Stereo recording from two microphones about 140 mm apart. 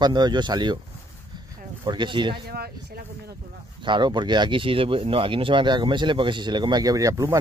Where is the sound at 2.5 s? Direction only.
90° right.